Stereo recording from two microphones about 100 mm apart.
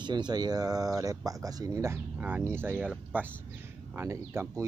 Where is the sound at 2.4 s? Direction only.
25° right (ahead or behind).